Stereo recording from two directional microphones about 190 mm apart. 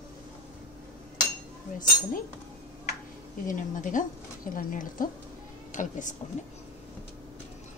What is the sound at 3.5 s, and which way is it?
Speech, 45° left (ahead or behind).